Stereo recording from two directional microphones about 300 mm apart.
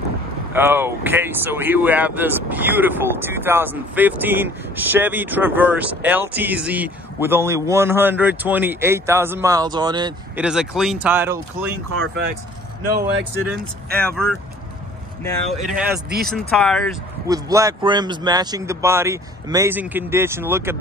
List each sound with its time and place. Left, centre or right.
0.5 s speech: centre
10.4 s speech: centre
11.9 s speech: right
14.0 s speech: centre
15.7 s speech: right
16.3 s speech: centre
17.3 s speech: centre